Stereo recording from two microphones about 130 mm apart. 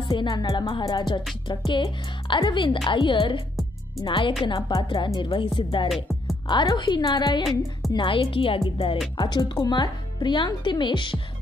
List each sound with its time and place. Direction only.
0.1 s speech: 35° left (ahead or behind)
9.1 s speech: 35° left (ahead or behind)